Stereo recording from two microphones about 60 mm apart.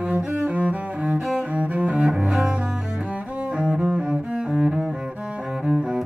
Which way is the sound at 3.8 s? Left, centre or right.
Centre.